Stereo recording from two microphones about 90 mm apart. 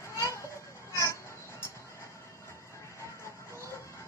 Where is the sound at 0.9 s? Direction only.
35° left (ahead or behind).